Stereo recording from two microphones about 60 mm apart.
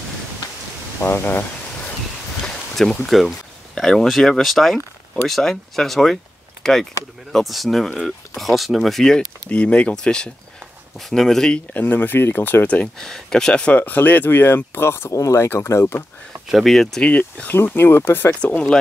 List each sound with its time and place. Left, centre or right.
1.0 s speech: left
2.4 s a sound: centre
3.2 s speech: centre
9.5 s speech: centre
11.7 s speech: left
12.6 s speech: left
13.0 s speech: centre
13.7 s speech: left
15.1 s speech: left
15.4 s speech: left
16.4 s speech: centre
17.0 s speech: left
17.5 s speech: left